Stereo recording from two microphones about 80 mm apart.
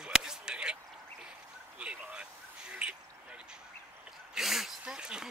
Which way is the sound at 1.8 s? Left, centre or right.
Centre.